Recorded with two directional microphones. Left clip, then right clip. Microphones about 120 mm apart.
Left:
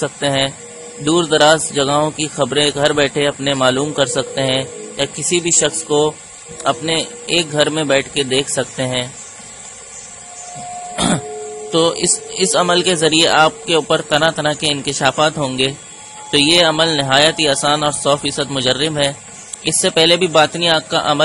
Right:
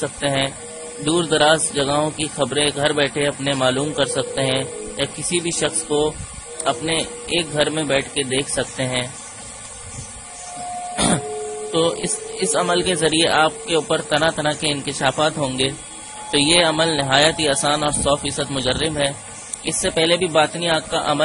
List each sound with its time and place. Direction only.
0.0 s a man's voice: 30° left (ahead or behind)
10.9 s printer: 15° left (ahead or behind)
11.9 s a man's voice: 35° left (ahead or behind)